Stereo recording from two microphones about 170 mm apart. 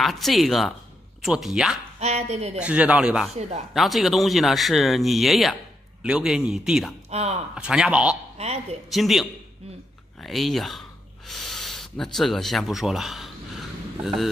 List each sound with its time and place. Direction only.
0.0 s speech: centre (ahead or behind)
2.0 s speech: 40° right (ahead or behind)
2.6 s speech: 5° right (ahead or behind)
3.3 s speech: 40° right (ahead or behind)
3.7 s speech: centre (ahead or behind)
7.1 s speech: 40° right (ahead or behind)
7.5 s speech: 5° right (ahead or behind)